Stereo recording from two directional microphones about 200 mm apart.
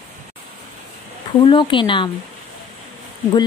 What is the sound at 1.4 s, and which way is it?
Speech, 25° left (ahead or behind).